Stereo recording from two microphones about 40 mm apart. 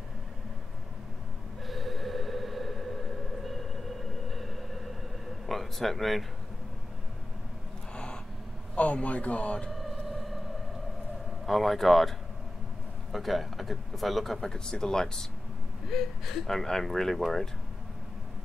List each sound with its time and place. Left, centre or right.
1.7 s train: centre
5.5 s speech: centre
7.9 s gasp: left
8.7 s speech: left
9.7 s a sound: centre
11.4 s speech: centre
14.4 s speech: centre
15.9 s speech: centre